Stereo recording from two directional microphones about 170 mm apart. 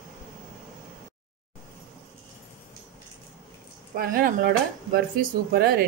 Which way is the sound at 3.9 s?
55° right (ahead or behind).